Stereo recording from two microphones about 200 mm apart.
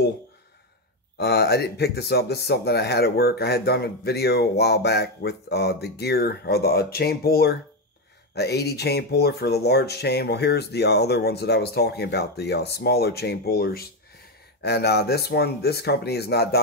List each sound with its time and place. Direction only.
1.1 s speech: 55° left (ahead or behind)